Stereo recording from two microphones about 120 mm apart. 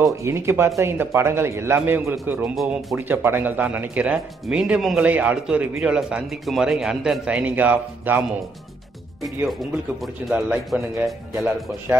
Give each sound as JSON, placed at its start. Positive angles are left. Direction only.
{"t": 0.0, "sound": "a man's voice", "side_deg": -25}
{"t": 2.5, "sound": "a man's voice", "side_deg": 0}
{"t": 3.0, "sound": "speech", "side_deg": -20}
{"t": 10.3, "sound": "a man's voice", "side_deg": -5}